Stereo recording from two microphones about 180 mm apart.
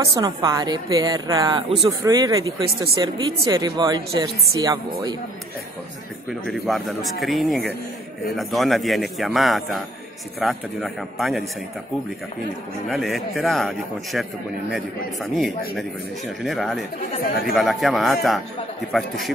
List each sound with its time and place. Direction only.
0.1 s a woman's voice: 20° right (ahead or behind)
6.6 s a man's voice: centre (ahead or behind)
12.9 s a man's voice: centre (ahead or behind)
16.4 s a man's voice: centre (ahead or behind)